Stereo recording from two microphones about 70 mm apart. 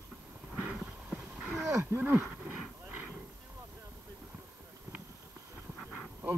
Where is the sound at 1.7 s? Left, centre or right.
Right.